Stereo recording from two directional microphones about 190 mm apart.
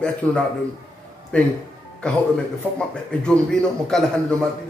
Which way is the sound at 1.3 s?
5° left (ahead or behind).